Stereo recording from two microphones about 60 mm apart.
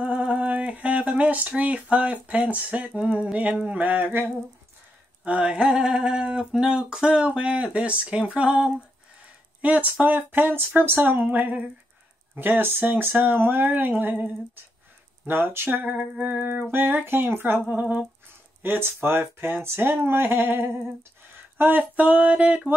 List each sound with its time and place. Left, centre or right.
0.0 s a sound: centre
1.6 s speech: right
5.2 s a sound: centre
8.4 s speech: centre
15.2 s speech: right
17.6 s speech: right
18.6 s speech: right